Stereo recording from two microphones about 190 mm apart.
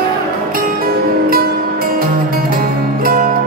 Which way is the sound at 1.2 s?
50° right (ahead or behind).